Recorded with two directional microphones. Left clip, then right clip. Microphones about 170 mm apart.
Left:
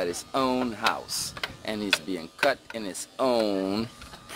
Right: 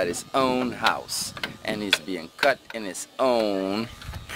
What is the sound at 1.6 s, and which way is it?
Speech, centre (ahead or behind).